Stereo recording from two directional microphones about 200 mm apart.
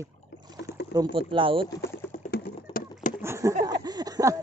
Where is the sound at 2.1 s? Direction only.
50° left (ahead or behind).